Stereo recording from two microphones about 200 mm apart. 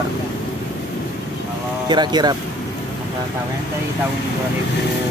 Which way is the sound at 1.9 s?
20° right (ahead or behind).